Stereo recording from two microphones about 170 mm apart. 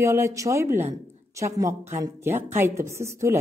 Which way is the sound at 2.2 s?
15° right (ahead or behind).